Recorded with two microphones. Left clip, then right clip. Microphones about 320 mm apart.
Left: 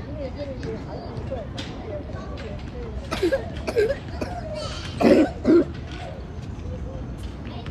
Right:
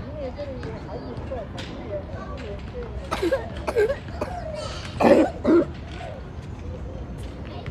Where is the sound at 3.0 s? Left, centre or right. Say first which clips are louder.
Left 1 dB; right.